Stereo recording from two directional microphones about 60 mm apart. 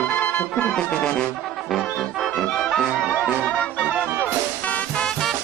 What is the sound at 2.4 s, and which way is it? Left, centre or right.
Music, centre.